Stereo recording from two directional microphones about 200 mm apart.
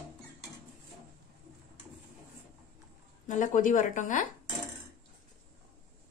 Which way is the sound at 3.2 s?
40° left (ahead or behind).